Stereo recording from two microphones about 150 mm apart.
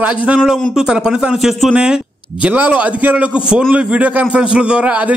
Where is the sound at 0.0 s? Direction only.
10° right (ahead or behind).